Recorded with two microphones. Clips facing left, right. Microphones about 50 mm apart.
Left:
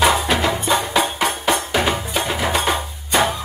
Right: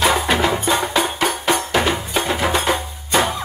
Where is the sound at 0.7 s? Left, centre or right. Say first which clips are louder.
Even; centre.